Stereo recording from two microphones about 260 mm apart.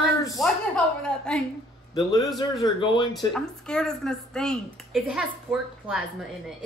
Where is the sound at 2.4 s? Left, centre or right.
Centre.